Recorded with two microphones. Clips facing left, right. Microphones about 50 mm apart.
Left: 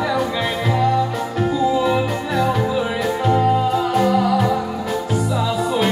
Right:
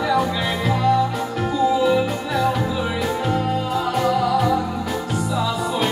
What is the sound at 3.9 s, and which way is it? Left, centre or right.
Music, centre.